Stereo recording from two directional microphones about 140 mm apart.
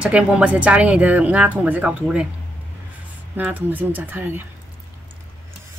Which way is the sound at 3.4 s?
10° right (ahead or behind).